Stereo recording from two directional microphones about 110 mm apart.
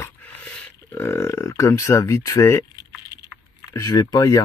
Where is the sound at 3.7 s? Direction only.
35° left (ahead or behind).